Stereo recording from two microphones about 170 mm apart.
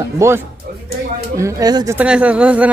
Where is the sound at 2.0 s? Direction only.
5° right (ahead or behind).